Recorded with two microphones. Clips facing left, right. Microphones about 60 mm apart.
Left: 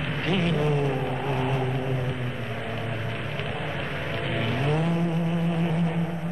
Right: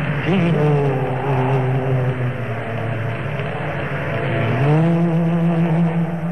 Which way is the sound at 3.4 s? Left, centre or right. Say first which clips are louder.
Right 7 dB; right.